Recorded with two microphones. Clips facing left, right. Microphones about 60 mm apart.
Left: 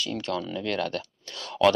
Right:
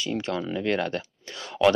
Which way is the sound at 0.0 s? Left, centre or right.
Centre.